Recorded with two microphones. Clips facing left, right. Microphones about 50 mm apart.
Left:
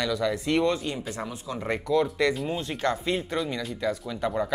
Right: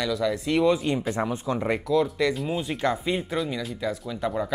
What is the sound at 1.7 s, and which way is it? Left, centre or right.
Speech, centre.